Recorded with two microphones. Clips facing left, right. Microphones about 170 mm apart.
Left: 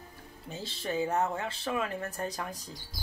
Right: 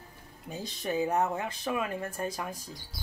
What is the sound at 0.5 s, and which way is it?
Speech, 15° right (ahead or behind).